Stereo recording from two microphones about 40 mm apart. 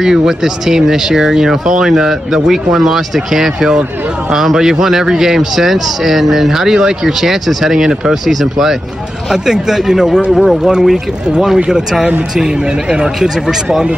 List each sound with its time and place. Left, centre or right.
0.0 s speech: centre
10.3 s speech: centre
10.6 s speech: centre